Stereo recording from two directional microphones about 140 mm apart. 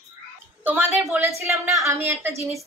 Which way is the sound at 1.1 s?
20° right (ahead or behind).